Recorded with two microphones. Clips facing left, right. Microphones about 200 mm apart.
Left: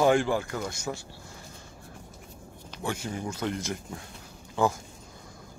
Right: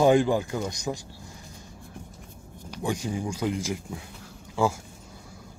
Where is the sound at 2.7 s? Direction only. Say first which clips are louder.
Right 4 dB; 15° right (ahead or behind).